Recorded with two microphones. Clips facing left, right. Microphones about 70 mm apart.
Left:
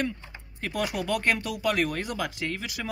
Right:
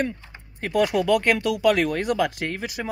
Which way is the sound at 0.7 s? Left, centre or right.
Right.